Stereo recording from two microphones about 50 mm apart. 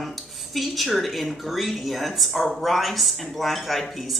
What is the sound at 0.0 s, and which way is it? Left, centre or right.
A woman's voice, centre.